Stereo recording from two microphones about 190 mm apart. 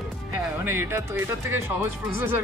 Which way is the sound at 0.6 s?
10° right (ahead or behind).